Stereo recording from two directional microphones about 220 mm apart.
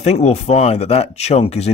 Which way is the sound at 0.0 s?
30° left (ahead or behind).